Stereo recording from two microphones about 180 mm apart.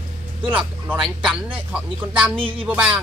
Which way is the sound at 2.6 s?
5° right (ahead or behind).